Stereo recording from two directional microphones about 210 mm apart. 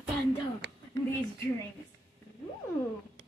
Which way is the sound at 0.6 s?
55° right (ahead or behind).